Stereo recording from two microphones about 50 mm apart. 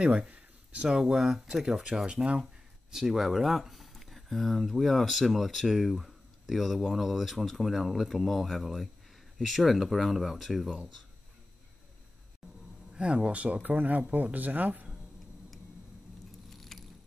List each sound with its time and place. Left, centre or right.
0.0 s speech: right
2.0 s speech: centre
2.9 s speech: centre
12.9 s speech: right
16.5 s a sound: centre